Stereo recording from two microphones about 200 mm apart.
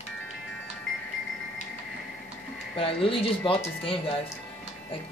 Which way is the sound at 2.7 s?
25° left (ahead or behind).